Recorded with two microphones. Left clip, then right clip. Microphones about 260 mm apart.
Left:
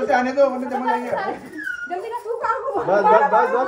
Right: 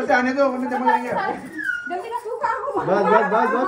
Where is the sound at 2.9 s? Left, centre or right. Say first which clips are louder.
Left 3 dB; right.